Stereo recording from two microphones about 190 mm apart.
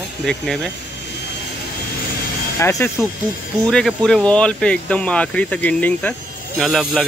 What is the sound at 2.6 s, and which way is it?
Speech, 15° left (ahead or behind).